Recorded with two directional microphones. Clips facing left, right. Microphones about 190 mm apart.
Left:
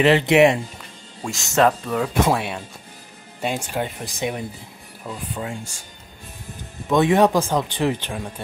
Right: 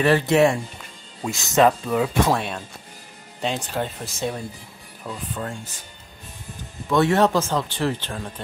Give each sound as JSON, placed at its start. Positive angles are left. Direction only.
{"t": 0.0, "sound": "speech", "side_deg": 15}
{"t": 1.2, "sound": "speech", "side_deg": 0}
{"t": 6.9, "sound": "speech", "side_deg": 15}